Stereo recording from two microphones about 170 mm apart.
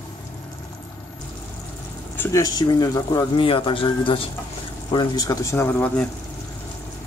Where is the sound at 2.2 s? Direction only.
20° left (ahead or behind).